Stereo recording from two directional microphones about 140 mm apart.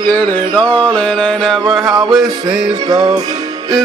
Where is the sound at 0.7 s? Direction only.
10° left (ahead or behind).